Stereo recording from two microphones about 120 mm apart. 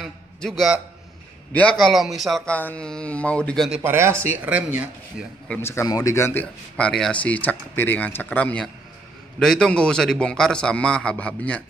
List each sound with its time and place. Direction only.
0.0 s a man's voice: 5° left (ahead or behind)
2.5 s speech: 10° left (ahead or behind)
3.8 s speech: 20° right (ahead or behind)
5.5 s speech: 20° left (ahead or behind)
6.4 s speech: 5° left (ahead or behind)